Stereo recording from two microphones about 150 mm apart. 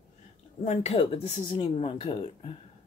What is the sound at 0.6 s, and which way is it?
Speech, 50° left (ahead or behind).